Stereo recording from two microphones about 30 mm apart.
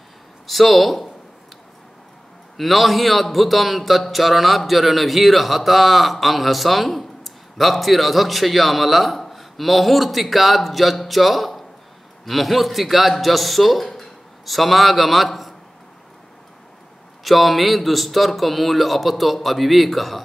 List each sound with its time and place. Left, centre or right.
0.5 s speech: centre
2.5 s a man's voice: centre
17.2 s speech: centre